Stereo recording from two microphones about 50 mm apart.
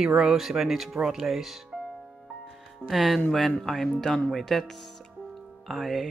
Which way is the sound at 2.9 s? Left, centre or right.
Centre.